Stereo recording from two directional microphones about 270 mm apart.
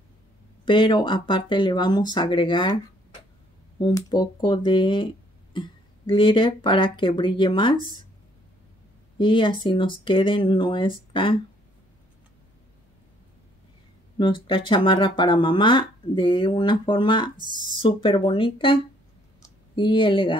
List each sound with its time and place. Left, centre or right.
0.7 s speech: centre
3.8 s speech: centre
9.2 s speech: centre
14.1 s speech: centre
17.4 s speech: centre
17.8 s speech: centre